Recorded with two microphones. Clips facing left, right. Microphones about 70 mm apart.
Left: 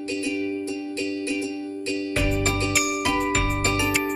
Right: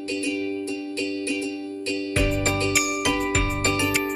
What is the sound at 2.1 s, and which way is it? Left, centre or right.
Music, centre.